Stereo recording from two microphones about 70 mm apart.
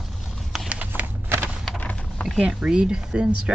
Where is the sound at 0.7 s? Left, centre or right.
Centre.